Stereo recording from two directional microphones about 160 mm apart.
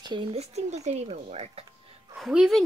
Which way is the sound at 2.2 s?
Centre (ahead or behind).